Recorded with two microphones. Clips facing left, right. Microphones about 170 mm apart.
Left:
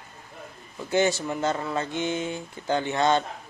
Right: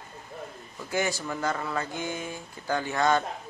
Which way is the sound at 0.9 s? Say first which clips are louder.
Left 6 dB; 25° left (ahead or behind).